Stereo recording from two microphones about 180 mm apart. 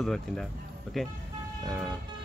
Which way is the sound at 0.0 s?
Centre (ahead or behind).